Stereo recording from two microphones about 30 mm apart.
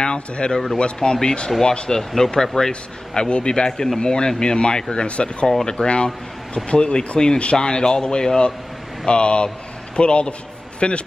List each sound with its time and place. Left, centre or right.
0.0 s speech: left; by 2.7 s centre
2.7 s speech: left
5.0 s speech: left
9.0 s a man's voice: left